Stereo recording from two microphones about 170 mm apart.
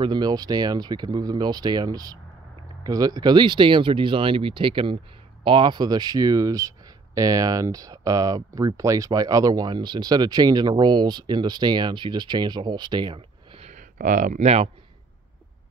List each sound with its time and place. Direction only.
0.0 s speech: 25° right (ahead or behind)
13.7 s speech: 50° right (ahead or behind)